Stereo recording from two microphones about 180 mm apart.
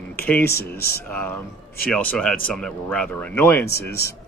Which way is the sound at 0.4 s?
60° left (ahead or behind).